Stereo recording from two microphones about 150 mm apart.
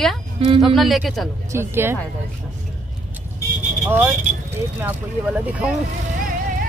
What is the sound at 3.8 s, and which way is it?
Speech, 15° right (ahead or behind).